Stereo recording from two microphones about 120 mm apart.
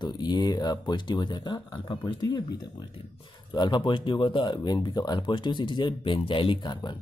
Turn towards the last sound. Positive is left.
turn(degrees=35)  # may be behind; listen again after turning